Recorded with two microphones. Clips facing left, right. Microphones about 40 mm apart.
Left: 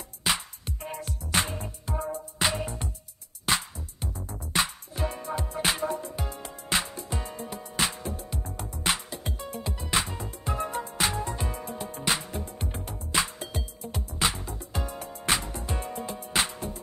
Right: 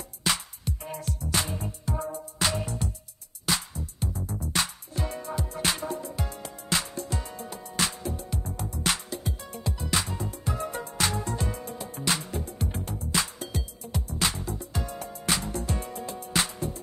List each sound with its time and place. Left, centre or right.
0.2 s music: centre
1.9 s music: centre
8.5 s music: left
10.5 s music: left
10.8 s music: centre
13.1 s music: centre
15.5 s music: left